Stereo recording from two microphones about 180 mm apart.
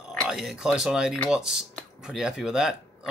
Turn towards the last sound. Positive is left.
turn(degrees=-5)  # may be behind; listen again after turning